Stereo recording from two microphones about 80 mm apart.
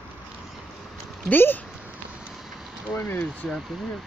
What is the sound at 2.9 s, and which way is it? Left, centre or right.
Speech, left.